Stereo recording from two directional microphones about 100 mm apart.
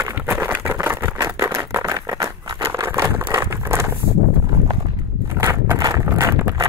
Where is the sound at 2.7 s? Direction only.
25° right (ahead or behind).